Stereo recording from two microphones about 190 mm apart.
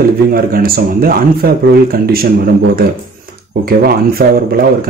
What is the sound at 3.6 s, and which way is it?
Speech, 50° right (ahead or behind).